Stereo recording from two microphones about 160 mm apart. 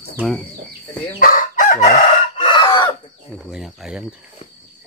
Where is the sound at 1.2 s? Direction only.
60° left (ahead or behind).